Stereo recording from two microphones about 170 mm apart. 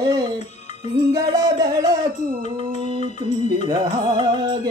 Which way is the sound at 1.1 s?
20° right (ahead or behind).